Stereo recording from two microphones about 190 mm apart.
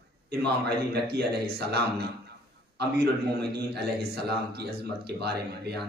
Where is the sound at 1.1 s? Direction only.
60° right (ahead or behind).